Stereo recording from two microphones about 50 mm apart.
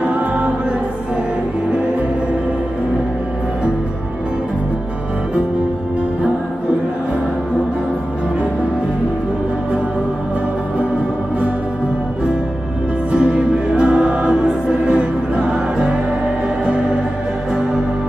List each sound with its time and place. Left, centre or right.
0.0 s music: right
13.1 s music: centre